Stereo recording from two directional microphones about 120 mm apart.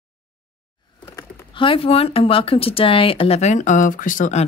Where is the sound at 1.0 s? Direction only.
25° left (ahead or behind).